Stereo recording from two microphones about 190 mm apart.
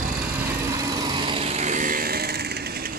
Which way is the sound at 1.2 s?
30° right (ahead or behind).